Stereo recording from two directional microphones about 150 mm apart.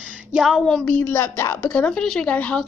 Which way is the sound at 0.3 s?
Centre (ahead or behind).